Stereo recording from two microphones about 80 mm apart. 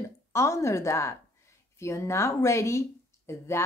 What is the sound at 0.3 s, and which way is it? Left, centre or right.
Speech, left.